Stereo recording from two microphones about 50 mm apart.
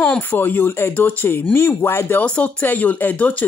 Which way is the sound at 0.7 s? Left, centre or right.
Left.